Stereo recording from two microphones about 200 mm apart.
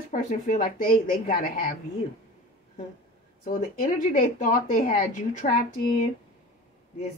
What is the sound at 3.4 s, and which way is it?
Speech, 45° left (ahead or behind).